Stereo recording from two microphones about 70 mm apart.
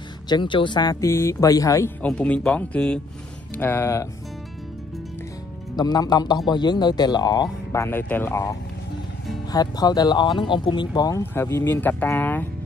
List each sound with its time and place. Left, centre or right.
0.3 s speech: left
1.0 s speech: left
1.4 s speech: left
2.0 s speech: centre
3.5 s speech: left
5.8 s a man's voice: left
7.7 s speech: left
9.5 s speech: left
11.3 s speech: left